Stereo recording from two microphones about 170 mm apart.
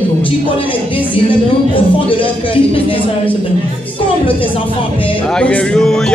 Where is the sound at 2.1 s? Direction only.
30° left (ahead or behind).